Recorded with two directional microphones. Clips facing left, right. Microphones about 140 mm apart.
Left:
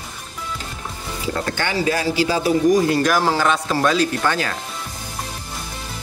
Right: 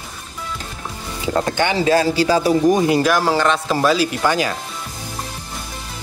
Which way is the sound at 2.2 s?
40° right (ahead or behind).